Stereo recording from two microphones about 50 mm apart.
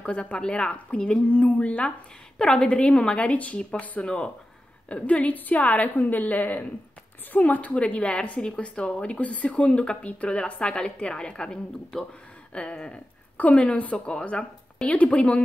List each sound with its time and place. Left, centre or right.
0.0 s a woman's voice: left
2.3 s a woman's voice: centre